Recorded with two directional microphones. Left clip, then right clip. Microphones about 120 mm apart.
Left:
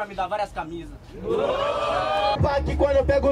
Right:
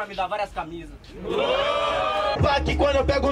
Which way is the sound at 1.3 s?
5° right (ahead or behind).